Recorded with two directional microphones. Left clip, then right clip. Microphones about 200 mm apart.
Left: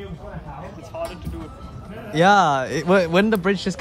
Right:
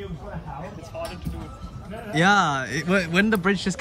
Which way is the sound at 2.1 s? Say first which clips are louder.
Left 4 dB; 10° left (ahead or behind).